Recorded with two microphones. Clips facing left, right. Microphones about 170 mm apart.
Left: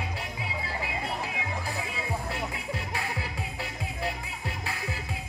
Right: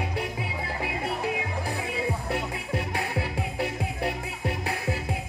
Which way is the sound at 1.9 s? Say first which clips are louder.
Right 5 dB; 55° right (ahead or behind).